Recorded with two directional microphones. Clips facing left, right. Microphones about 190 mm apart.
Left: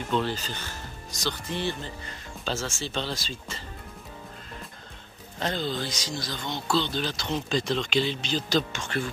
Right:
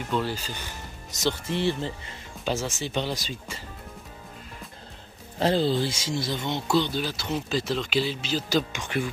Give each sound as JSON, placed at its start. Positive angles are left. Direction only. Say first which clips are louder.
{"t": 0.1, "sound": "speech", "louder": "left 1 dB", "side_deg": -10}
{"t": 5.4, "sound": "speech", "louder": "right 7 dB", "side_deg": -30}